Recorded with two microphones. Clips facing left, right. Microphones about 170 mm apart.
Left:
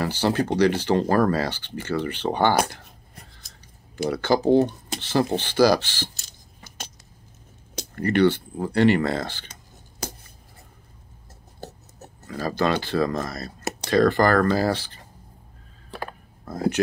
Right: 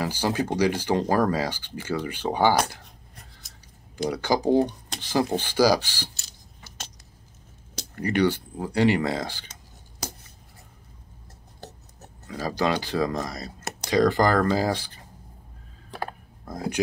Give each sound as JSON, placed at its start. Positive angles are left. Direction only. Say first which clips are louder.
{"t": 0.0, "sound": "speech", "louder": "left 3 dB", "side_deg": -10}
{"t": 4.1, "sound": "speech", "louder": "left 3 dB", "side_deg": -15}
{"t": 7.9, "sound": "speech", "louder": "left 3 dB", "side_deg": -10}
{"t": 12.3, "sound": "speech", "louder": "left 2 dB", "side_deg": -15}